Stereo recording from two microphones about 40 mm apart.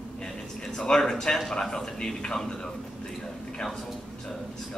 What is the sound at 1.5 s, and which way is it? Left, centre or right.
Speech, centre.